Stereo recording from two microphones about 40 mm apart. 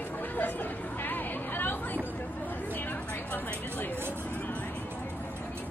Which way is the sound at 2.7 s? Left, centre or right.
Left.